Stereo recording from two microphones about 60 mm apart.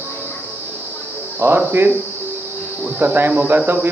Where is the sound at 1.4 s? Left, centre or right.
Right.